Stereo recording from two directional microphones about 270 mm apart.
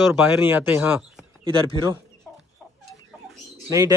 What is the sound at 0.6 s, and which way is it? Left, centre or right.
Speech, centre.